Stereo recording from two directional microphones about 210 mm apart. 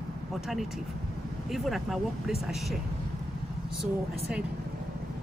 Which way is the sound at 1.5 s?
Centre (ahead or behind).